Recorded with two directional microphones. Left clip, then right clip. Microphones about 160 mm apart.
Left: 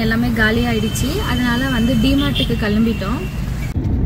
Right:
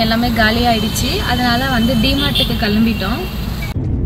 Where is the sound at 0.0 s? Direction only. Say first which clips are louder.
Right 3 dB; 5° right (ahead or behind).